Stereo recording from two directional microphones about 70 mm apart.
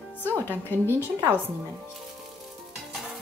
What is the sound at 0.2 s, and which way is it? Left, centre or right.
Speech, left.